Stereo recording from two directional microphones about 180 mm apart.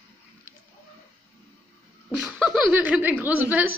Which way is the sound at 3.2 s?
10° right (ahead or behind).